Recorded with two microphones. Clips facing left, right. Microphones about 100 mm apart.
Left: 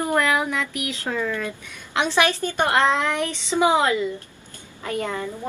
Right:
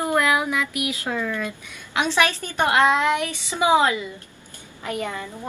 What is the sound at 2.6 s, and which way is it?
A woman's voice, 15° right (ahead or behind).